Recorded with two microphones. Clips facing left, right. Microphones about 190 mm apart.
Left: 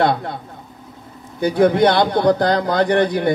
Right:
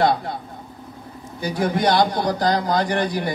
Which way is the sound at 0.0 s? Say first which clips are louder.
Left 2 dB; 55° left (ahead or behind).